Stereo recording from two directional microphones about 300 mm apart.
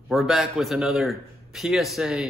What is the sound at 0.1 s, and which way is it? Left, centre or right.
Speech, centre.